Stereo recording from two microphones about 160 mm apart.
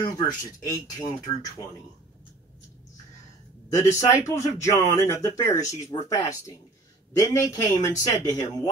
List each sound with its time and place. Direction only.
0.0 s speech: 20° left (ahead or behind)
3.7 s speech: 20° left (ahead or behind)